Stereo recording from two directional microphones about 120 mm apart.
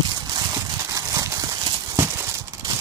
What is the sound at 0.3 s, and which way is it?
Horse, 30° right (ahead or behind).